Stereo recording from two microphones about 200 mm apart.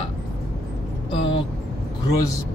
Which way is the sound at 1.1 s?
25° left (ahead or behind).